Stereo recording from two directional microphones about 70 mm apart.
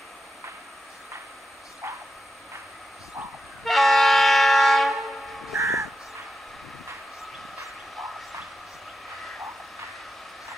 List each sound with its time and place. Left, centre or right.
3.6 s train: centre
5.6 s crow: right
7.2 s a sound: centre